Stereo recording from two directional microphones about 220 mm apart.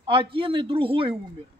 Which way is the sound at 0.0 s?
25° right (ahead or behind).